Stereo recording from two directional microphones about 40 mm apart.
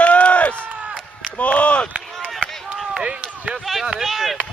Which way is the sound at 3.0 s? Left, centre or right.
Right.